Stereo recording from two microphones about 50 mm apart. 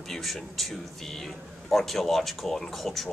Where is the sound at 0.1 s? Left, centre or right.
Centre.